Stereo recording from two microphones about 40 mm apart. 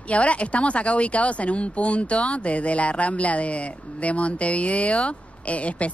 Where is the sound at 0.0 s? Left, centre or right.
Left.